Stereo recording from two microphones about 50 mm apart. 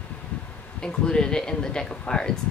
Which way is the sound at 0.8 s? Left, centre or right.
Centre.